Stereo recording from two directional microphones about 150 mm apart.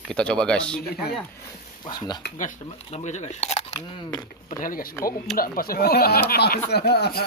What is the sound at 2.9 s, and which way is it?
Speech, 50° left (ahead or behind).